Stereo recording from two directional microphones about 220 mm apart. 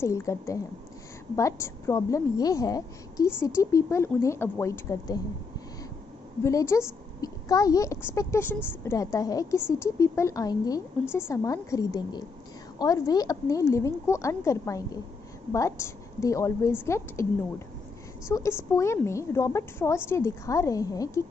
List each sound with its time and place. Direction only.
0.0 s a woman's voice: 15° left (ahead or behind)
6.4 s a woman's voice: 10° left (ahead or behind)
18.3 s a woman's voice: 15° left (ahead or behind)